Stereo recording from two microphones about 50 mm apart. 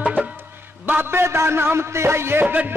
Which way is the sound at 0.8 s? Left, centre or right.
Right.